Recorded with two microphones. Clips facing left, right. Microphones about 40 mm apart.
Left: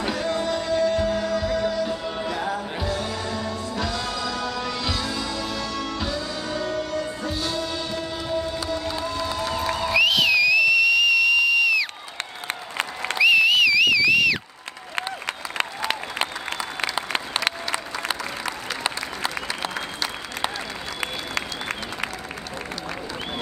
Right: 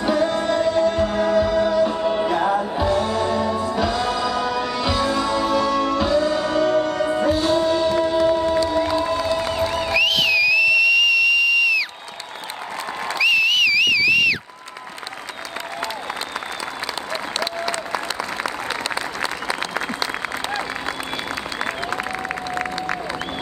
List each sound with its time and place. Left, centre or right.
0.3 s music: right
2.0 s music: right
6.1 s music: right
9.5 s crowd: right
9.9 s a sound: centre
13.2 s whistle: centre
16.8 s applause: left